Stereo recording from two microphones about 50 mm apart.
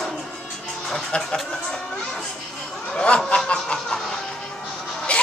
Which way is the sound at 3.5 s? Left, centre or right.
Centre.